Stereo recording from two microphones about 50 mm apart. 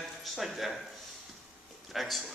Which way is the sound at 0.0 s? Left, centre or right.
Centre.